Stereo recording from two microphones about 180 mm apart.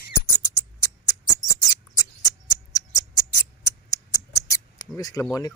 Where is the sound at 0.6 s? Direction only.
15° left (ahead or behind).